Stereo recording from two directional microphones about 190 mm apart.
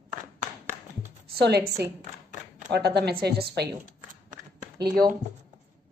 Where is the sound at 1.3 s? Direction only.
55° right (ahead or behind).